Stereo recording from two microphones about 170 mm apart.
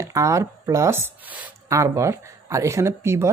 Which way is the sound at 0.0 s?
20° right (ahead or behind).